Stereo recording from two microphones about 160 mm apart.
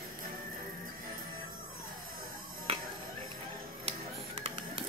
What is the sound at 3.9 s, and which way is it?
Music, 40° right (ahead or behind).